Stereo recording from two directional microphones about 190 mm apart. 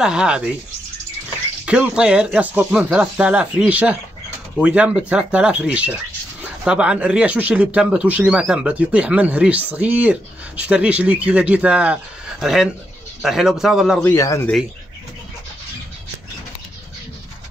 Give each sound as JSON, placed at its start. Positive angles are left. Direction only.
{"t": 0.0, "sound": "speech", "side_deg": -5}
{"t": 1.7, "sound": "speech", "side_deg": -5}
{"t": 14.0, "sound": "a man's voice", "side_deg": 15}